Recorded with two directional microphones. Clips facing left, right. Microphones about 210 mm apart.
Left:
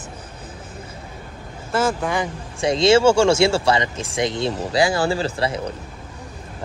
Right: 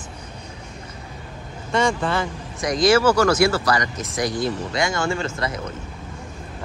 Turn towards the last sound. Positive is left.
turn(degrees=30)  # may be behind; listen again after turning